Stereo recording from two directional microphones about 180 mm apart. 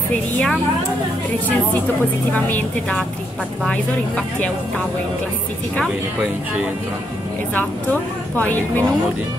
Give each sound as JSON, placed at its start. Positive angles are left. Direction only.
{"t": 2.3, "sound": "speech", "side_deg": 10}
{"t": 7.5, "sound": "speech", "side_deg": 10}